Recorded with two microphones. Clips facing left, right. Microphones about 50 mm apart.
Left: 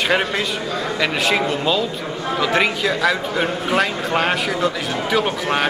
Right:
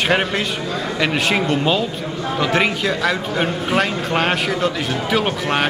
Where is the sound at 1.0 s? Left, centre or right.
Centre.